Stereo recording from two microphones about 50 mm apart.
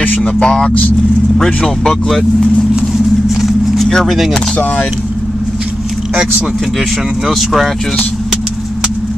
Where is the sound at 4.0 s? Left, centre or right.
Centre.